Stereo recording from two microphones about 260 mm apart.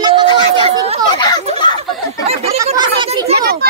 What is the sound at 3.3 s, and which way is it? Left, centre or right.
Speech, right.